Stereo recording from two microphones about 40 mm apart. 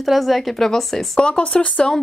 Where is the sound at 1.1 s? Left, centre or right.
Left.